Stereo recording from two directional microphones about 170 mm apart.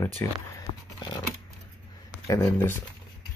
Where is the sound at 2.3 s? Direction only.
10° left (ahead or behind).